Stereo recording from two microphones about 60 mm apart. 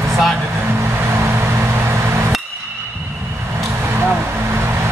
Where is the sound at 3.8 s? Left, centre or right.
Right.